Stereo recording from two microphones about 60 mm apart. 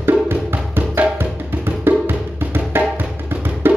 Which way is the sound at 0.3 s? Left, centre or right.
Right.